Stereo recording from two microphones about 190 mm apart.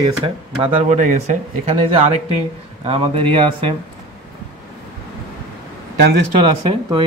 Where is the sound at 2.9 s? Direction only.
30° right (ahead or behind).